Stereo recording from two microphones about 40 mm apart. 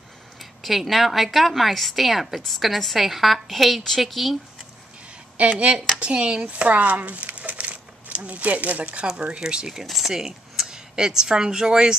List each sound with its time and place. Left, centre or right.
0.4 s speech: centre
5.4 s speech: right
6.7 s speech: right
9.4 s speech: centre
9.8 s speech: centre
10.2 s speech: centre